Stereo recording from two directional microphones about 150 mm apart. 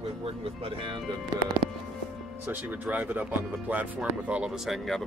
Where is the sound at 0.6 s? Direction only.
35° right (ahead or behind).